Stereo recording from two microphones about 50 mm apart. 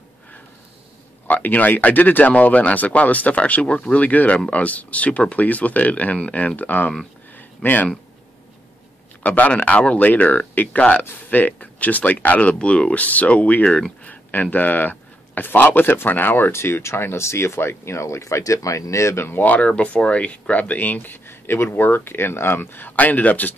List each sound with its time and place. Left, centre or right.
1.2 s speech: left
7.3 s a sound: left
9.2 s a man's voice: left
19.4 s speech: left